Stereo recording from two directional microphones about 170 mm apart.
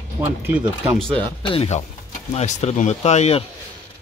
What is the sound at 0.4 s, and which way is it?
Speech, 10° right (ahead or behind).